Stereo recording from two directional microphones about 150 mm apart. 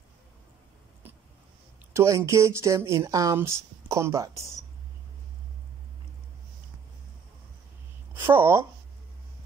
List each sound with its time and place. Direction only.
2.0 s speech: 20° right (ahead or behind)
8.1 s speech: 15° right (ahead or behind)